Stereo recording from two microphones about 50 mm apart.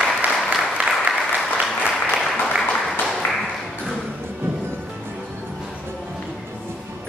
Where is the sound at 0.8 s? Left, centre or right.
Right.